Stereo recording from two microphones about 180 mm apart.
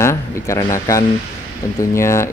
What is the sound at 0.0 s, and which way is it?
Speech, 15° left (ahead or behind).